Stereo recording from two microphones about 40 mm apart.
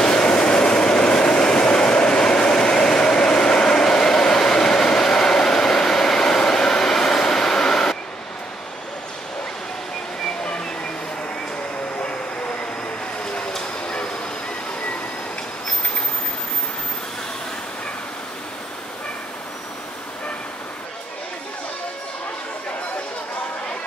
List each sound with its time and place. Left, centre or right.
0.0 s train: left
13.2 s vehicle: centre